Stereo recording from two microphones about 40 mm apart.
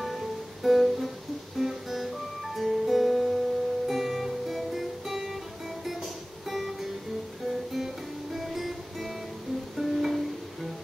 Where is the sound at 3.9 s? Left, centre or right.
Centre.